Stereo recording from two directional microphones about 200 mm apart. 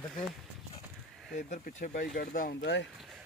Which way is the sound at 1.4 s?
40° left (ahead or behind).